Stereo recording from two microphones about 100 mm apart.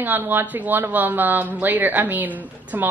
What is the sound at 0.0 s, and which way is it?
A woman's voice, 20° right (ahead or behind).